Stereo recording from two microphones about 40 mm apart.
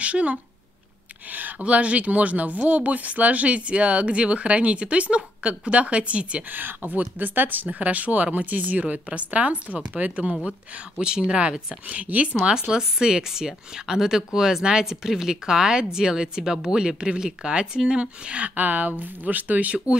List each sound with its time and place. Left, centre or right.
0.0 s speech: right
6.5 s speech: right
11.0 s speech: right
12.5 s speech: centre; by 19.8 s right